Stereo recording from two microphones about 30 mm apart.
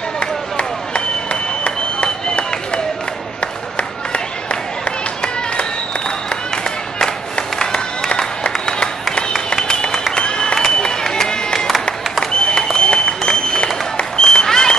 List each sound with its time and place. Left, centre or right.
0.2 s a sound: left
3.7 s music: left
7.5 s run: left
9.1 s a sound: left
11.1 s music: left
12.3 s applause: left